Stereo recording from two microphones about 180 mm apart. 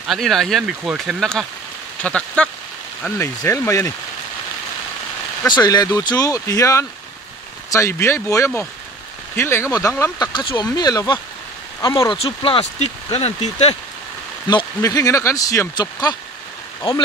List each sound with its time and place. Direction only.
0.1 s speech: centre (ahead or behind)
5.5 s speech: 25° left (ahead or behind)
14.5 s speech: 20° left (ahead or behind)